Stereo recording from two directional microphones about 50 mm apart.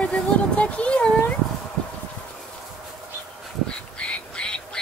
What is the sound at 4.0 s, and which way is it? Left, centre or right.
Duck, left.